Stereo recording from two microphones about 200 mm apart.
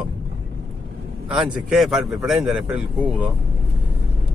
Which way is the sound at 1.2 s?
5° right (ahead or behind).